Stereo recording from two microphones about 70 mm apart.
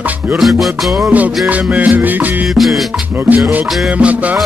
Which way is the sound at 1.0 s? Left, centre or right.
Right.